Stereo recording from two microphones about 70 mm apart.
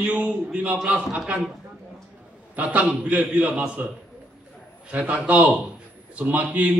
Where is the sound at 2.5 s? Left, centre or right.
Centre.